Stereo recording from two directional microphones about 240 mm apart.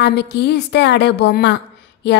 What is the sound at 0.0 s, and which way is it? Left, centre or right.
A woman's voice, left.